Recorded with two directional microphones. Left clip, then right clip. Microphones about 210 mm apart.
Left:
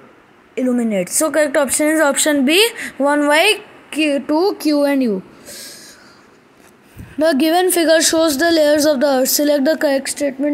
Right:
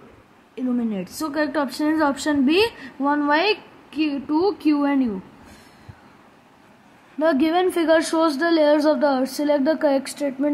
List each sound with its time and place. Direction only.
0.6 s a woman's voice: 15° left (ahead or behind)
7.2 s a woman's voice: 15° left (ahead or behind)